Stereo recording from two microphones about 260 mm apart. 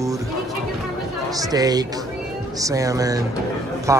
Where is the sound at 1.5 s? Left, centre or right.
Centre.